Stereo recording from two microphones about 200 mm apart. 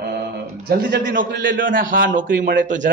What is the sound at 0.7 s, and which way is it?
Speech, 45° right (ahead or behind).